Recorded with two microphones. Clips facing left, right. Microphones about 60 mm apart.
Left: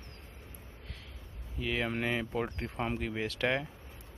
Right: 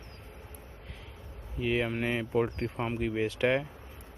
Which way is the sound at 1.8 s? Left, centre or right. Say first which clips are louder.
Right 2 dB; centre.